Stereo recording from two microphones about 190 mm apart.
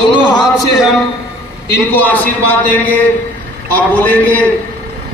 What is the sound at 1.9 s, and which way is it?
A man's voice, 10° left (ahead or behind).